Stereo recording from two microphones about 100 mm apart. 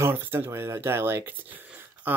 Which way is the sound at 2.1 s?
20° right (ahead or behind).